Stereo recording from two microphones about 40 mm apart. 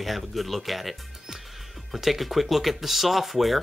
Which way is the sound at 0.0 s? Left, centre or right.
Centre.